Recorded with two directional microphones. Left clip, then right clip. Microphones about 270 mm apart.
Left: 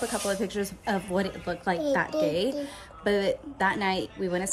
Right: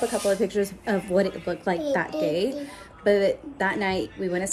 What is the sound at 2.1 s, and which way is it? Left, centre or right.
Speech, left.